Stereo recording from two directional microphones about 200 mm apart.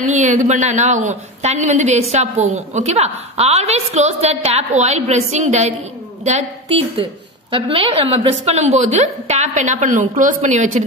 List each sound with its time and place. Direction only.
0.1 s a woman's voice: 35° right (ahead or behind)
7.0 s a woman's voice: 25° right (ahead or behind)